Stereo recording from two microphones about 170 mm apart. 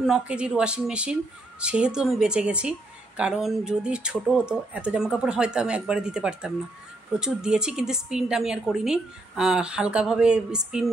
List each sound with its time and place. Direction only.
0.0 s a woman's voice: 5° right (ahead or behind)